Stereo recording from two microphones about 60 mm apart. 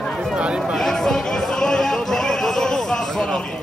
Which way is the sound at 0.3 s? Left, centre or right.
Centre.